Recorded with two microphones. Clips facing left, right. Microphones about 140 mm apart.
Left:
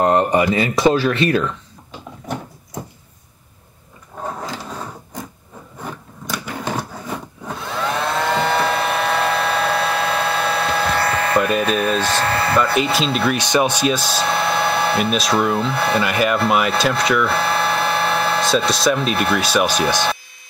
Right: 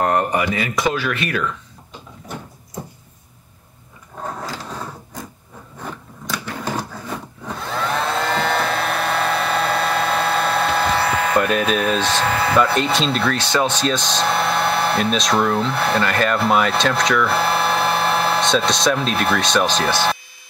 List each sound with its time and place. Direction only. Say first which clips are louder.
0.0 s speech: left 3 dB; 20° left (ahead or behind)
6.2 s sewing machine: even; 10° left (ahead or behind)
7.7 s a sound: even; centre (ahead or behind)
13.3 s speech: left 2 dB; 15° left (ahead or behind)